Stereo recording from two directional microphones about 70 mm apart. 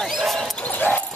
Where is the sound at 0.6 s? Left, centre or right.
Left.